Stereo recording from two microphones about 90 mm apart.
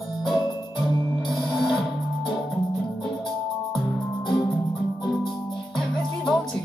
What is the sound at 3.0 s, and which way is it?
Music, centre (ahead or behind).